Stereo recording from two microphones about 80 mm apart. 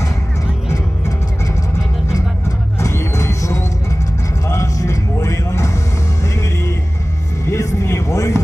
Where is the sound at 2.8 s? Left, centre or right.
Left.